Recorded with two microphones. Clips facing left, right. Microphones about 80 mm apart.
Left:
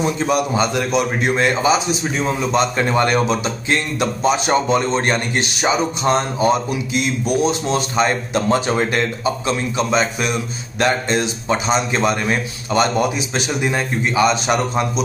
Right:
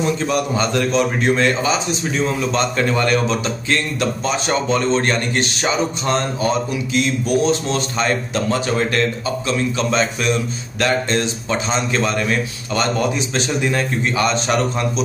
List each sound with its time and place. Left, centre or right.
0.0 s a man's voice: centre